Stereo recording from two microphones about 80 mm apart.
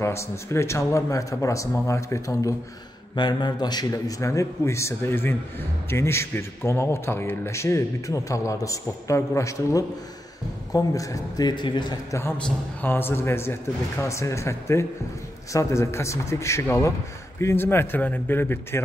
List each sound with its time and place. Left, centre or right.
0.0 s a man's voice: left
3.2 s a man's voice: left
4.2 s a man's voice: left
12.1 s a man's voice: left